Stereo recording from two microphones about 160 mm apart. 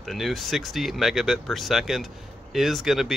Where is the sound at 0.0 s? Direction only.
Centre (ahead or behind).